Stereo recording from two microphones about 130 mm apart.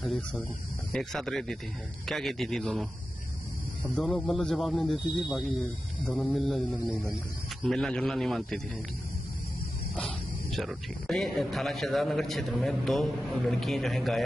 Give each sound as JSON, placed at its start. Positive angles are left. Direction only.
{"t": 0.0, "sound": "speech", "side_deg": 0}
{"t": 3.9, "sound": "speech", "side_deg": 0}
{"t": 9.9, "sound": "speech", "side_deg": 0}